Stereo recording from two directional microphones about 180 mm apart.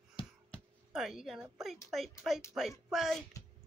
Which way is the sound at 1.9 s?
Centre (ahead or behind).